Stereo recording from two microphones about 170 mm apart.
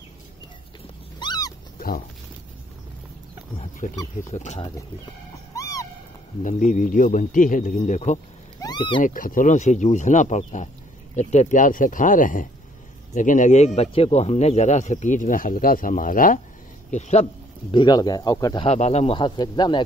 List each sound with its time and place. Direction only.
1.2 s cat: 25° left (ahead or behind)
3.9 s speech: 20° left (ahead or behind)
4.3 s speech: 40° left (ahead or behind)
5.5 s owl: 20° left (ahead or behind)
6.4 s speech: 50° left (ahead or behind)
8.5 s speech: 25° left (ahead or behind)
9.0 s speech: 55° left (ahead or behind)
13.7 s speech: 35° left (ahead or behind); by 16.3 s 55° left (ahead or behind)
16.9 s a man's voice: 40° left (ahead or behind)
17.7 s speech: 25° left (ahead or behind)
18.7 s speech: 40° left (ahead or behind)